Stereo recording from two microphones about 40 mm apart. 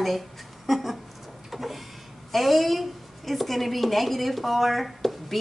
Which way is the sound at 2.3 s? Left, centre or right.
Centre.